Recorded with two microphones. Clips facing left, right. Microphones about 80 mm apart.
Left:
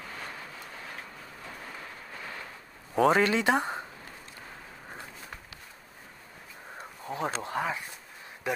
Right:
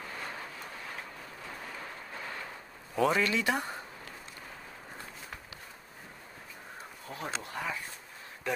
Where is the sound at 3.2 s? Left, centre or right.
Left.